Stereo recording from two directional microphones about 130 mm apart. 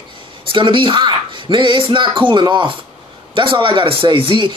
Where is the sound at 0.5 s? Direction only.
40° right (ahead or behind).